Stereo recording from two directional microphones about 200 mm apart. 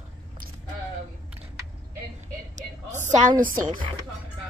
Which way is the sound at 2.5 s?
40° right (ahead or behind).